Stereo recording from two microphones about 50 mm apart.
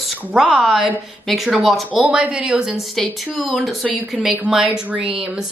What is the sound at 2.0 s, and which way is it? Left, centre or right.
Speech, right.